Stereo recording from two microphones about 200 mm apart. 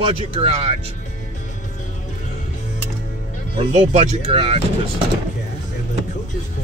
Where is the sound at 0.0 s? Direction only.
30° right (ahead or behind).